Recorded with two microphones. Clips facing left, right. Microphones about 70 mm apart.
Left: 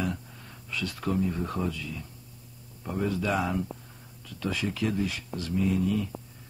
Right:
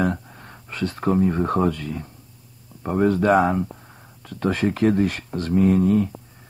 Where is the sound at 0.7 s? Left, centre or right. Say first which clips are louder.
Right 8 dB; right.